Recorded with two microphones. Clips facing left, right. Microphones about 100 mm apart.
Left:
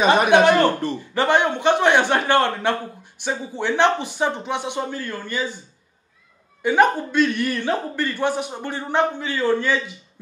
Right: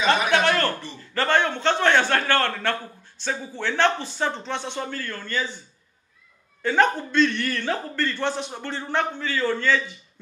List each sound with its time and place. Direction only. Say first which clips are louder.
0.3 s a man's voice: left 7 dB; 15° left (ahead or behind)
6.6 s a man's voice: left 3 dB; 15° left (ahead or behind)